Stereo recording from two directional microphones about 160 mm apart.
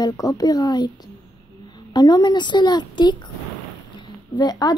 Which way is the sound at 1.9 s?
25° left (ahead or behind).